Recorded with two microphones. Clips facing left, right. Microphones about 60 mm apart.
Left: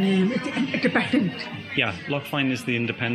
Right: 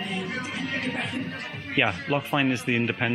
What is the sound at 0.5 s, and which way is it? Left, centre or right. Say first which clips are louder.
Speech: left 7 dB; left.